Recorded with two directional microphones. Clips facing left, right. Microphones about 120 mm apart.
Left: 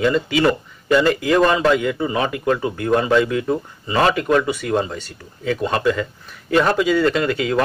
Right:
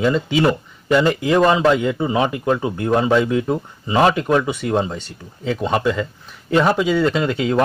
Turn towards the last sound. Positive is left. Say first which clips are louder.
# right 1 dB
turn(degrees=-25)  # may be behind; listen again after turning